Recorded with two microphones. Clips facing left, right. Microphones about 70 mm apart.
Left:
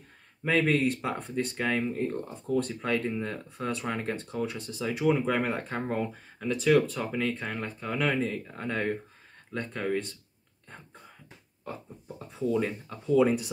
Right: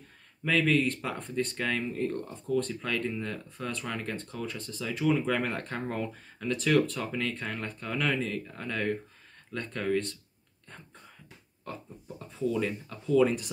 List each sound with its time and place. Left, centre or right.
0.5 s speech: left
0.8 s speech: centre
1.8 s speech: centre
12.5 s speech: left
13.2 s speech: centre